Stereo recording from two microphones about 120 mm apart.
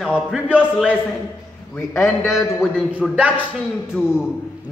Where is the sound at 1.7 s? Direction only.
25° left (ahead or behind).